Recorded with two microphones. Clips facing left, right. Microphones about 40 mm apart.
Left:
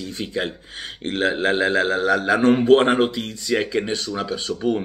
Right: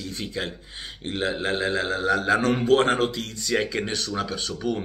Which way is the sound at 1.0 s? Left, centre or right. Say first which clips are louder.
Left 6 dB; left.